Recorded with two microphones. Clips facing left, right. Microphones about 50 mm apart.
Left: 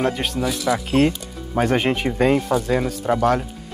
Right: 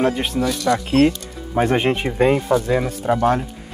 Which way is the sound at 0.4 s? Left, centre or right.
Centre.